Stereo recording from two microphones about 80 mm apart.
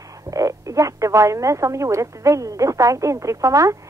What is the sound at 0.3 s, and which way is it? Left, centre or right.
Speech, right.